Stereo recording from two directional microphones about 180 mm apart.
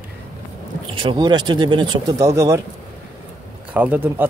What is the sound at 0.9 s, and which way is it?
Speech, 25° right (ahead or behind).